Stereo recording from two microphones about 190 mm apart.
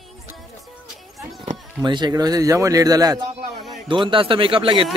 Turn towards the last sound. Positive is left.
turn(degrees=-25)  # may be behind; listen again after turning